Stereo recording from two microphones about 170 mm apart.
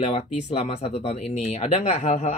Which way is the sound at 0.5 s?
35° left (ahead or behind).